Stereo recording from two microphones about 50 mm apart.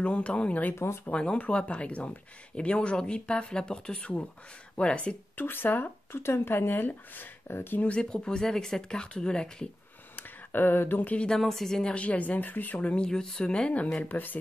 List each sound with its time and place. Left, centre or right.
0.0 s speech: left
0.7 s speech: left
1.1 s speech: left
5.4 s speech: left
6.1 s speech: left
7.8 s speech: left
10.1 s a sound: left
11.0 s speech: left
11.2 s speech: centre
11.9 s speech: left
14.0 s speech: left